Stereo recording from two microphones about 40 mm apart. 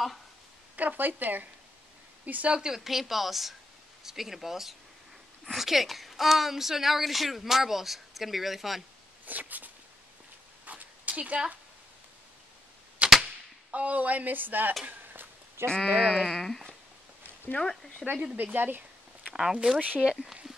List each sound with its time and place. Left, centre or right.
0.7 s a woman's voice: right
2.5 s speech: centre
2.8 s a woman's voice: centre
9.2 s a sound: right
10.6 s dog: right
13.0 s a sound: right
13.7 s speech: right
15.1 s a sound: right
16.0 s speech: centre
18.3 s speech: right
19.3 s speech: centre